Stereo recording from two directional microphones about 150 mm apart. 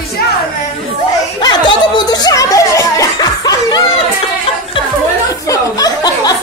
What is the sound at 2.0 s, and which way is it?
Music, 25° left (ahead or behind).